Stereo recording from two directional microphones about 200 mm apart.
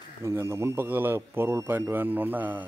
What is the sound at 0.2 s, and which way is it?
A man's voice, 15° right (ahead or behind).